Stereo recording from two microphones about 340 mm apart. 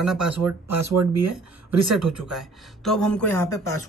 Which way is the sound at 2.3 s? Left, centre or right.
Centre.